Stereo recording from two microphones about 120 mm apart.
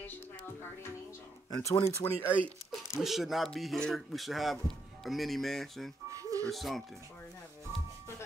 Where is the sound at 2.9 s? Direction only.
Centre (ahead or behind).